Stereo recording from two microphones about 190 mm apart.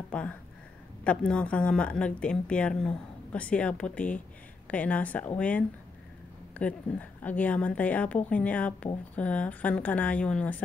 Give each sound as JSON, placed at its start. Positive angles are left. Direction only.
{"t": 0.1, "sound": "speech", "side_deg": 5}